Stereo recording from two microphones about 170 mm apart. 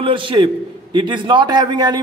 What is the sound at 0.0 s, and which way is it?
A man's voice, 30° right (ahead or behind).